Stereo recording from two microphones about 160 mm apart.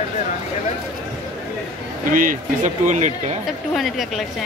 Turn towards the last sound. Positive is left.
turn(degrees=0)  # may be behind; listen again after turning